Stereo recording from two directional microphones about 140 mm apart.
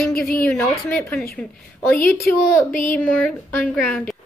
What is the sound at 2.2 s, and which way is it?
Speech, 80° left.